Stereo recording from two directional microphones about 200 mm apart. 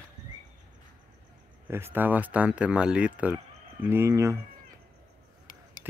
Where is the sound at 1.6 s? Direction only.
10° right (ahead or behind).